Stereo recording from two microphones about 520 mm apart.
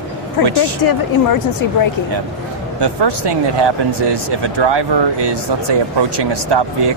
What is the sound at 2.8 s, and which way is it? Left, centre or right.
Speech, right.